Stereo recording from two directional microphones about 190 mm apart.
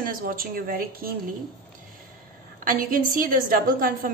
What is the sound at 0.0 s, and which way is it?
A woman's voice, 50° right (ahead or behind).